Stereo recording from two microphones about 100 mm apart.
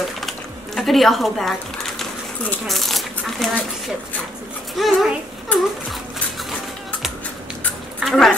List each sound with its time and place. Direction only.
0.2 s a sound: centre (ahead or behind)
2.6 s speech: centre (ahead or behind)
4.7 s a child's voice: centre (ahead or behind)
5.5 s speech: 15° left (ahead or behind)
8.0 s a woman's voice: centre (ahead or behind)